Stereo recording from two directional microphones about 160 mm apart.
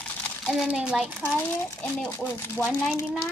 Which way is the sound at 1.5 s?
10° left (ahead or behind).